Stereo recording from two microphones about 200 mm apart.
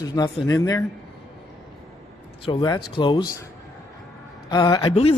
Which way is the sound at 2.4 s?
25° left (ahead or behind).